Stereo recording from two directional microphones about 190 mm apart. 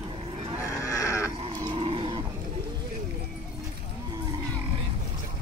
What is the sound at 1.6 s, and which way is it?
Livestock, 25° right (ahead or behind).